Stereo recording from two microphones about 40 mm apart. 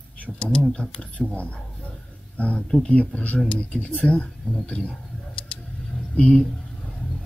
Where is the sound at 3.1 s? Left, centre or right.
Left.